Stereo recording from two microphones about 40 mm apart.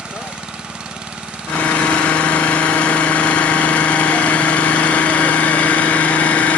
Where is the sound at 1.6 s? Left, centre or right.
Left.